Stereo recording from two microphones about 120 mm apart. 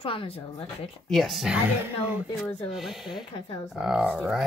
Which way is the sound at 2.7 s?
Centre (ahead or behind).